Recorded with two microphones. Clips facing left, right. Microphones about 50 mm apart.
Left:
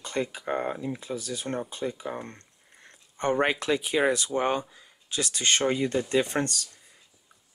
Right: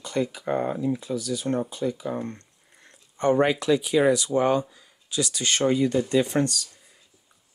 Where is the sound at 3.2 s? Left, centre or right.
Left.